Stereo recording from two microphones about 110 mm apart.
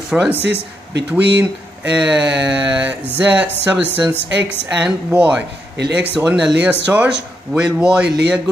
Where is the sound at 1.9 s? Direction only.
10° right (ahead or behind).